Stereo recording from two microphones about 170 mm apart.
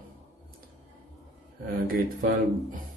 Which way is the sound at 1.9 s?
55° right (ahead or behind).